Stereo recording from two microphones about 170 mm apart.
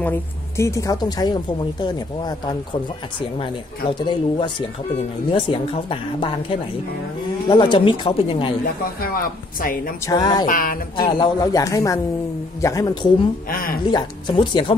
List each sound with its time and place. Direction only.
0.6 s speech: 20° left (ahead or behind)
4.0 s speech: 25° left (ahead or behind)
7.4 s speech: 25° left (ahead or behind)
9.0 s speech: 60° left (ahead or behind)
10.0 s speech: 25° left (ahead or behind)
10.4 s speech: 55° left (ahead or behind)
11.0 s speech: 30° left (ahead or behind)
13.5 s speech: 55° left (ahead or behind)
13.8 s speech: 25° left (ahead or behind)